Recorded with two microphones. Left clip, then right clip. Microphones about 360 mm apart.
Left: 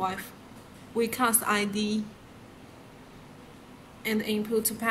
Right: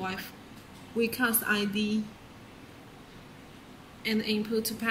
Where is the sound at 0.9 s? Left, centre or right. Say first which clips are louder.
Left 2 dB; left.